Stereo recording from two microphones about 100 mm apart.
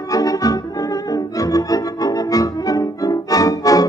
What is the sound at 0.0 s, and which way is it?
Music, 35° left (ahead or behind).